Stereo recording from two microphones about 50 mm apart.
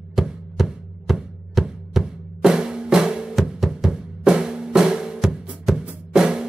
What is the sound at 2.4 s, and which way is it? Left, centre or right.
Drum, centre.